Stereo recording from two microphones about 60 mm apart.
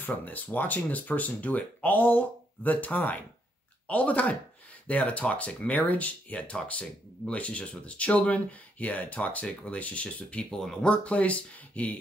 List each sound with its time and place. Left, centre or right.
0.0 s speech: left